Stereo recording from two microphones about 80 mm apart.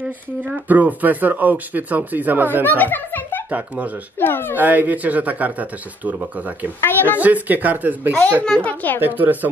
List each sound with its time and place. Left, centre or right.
0.0 s speech: centre
2.8 s music: left
3.4 s speech: centre
4.2 s a child's voice: left
4.6 s speech: right
6.8 s a child's voice: left
7.2 s speech: centre
8.5 s a child's voice: centre
9.0 s speech: right